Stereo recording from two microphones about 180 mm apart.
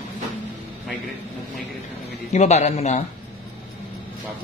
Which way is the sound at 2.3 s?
40° left (ahead or behind).